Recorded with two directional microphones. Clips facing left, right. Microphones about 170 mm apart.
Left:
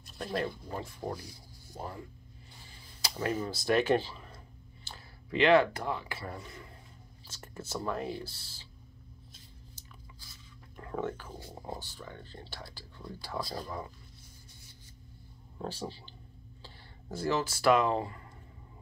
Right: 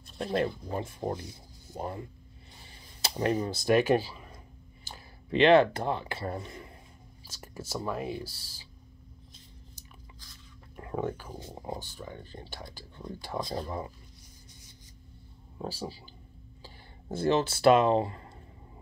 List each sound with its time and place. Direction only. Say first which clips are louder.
0.2 s speech: right 5 dB; 25° right (ahead or behind)
3.3 s speech: right 3 dB; 15° right (ahead or behind)
7.2 s speech: right 2 dB; 10° right (ahead or behind)
10.8 s speech: right 2 dB; 15° right (ahead or behind)
15.5 s a sound: right 1 dB; 10° right (ahead or behind)
17.1 s speech: right 5 dB; 25° right (ahead or behind)